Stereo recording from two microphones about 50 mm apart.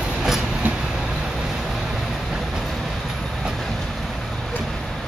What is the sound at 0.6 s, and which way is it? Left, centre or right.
Vehicle, right.